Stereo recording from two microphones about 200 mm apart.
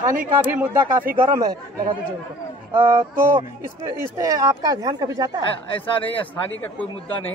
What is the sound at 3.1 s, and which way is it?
Speech, 10° right (ahead or behind).